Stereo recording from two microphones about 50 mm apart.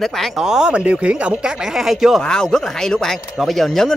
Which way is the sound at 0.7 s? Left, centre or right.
Right.